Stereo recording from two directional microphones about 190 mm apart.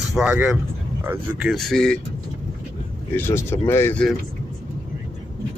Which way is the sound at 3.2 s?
10° left (ahead or behind).